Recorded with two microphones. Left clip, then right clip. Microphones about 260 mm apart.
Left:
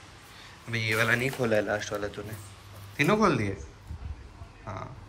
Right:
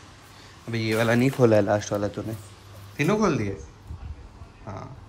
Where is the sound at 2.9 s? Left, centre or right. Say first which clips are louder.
Right 1 dB; centre.